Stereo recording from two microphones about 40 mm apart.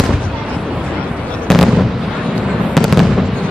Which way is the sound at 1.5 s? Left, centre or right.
Centre.